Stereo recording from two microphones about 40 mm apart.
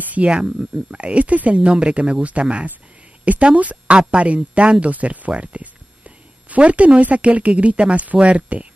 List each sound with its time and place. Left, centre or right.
0.3 s speech: right
5.3 s a sound: right
7.0 s speech: right